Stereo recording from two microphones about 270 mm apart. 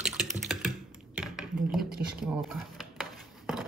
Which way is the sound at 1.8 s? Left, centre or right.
Right.